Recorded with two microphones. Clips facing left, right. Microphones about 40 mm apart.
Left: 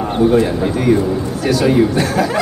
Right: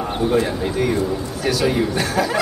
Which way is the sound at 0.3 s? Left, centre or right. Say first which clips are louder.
Left 5 dB; centre.